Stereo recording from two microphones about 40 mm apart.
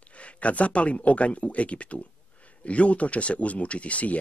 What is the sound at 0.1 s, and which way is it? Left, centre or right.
Speech, left.